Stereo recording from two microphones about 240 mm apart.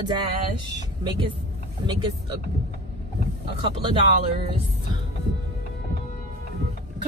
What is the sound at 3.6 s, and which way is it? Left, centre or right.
Speech, right.